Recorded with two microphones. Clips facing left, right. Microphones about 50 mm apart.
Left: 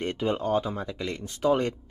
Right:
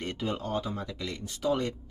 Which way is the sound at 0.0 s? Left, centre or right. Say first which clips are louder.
Left 6 dB; left.